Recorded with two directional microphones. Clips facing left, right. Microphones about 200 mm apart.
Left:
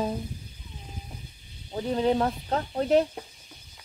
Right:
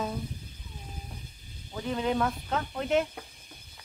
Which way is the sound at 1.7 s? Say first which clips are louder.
Left 4 dB; 35° left (ahead or behind).